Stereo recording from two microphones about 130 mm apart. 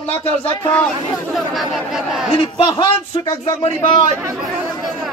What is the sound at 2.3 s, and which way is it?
A man's voice, 45° left (ahead or behind).